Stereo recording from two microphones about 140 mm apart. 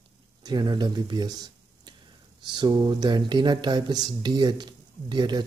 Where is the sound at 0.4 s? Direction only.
30° right (ahead or behind).